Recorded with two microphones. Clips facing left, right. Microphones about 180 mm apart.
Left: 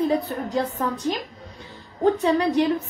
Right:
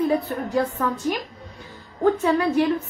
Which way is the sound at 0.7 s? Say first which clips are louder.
Right 1 dB; 35° left (ahead or behind).